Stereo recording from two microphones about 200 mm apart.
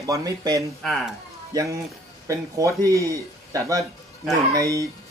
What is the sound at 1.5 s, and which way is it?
Speech, 15° right (ahead or behind).